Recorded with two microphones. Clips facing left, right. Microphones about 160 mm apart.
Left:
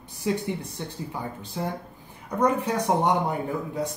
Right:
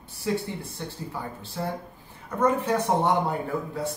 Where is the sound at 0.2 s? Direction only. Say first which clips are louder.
Left 1 dB; 20° left (ahead or behind).